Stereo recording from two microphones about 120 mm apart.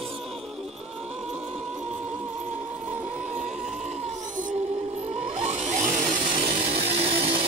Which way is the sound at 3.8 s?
90° right.